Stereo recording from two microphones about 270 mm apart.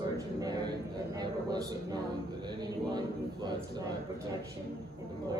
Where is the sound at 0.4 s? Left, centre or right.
Centre.